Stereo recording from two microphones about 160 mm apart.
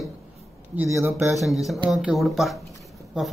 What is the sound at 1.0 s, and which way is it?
Speech, 15° right (ahead or behind).